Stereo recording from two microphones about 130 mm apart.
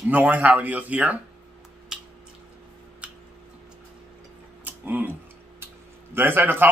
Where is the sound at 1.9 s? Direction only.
5° right (ahead or behind).